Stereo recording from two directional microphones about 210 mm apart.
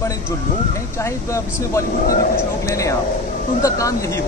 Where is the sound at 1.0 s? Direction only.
15° left (ahead or behind).